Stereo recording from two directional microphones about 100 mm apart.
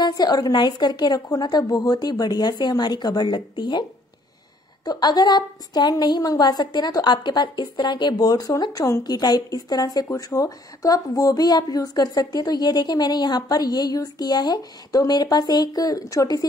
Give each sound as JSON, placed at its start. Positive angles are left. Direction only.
{"t": 0.0, "sound": "a woman's voice", "side_deg": 40}
{"t": 4.8, "sound": "a woman's voice", "side_deg": 45}